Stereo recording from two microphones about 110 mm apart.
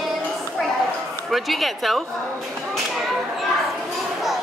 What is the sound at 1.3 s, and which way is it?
Speech, centre (ahead or behind).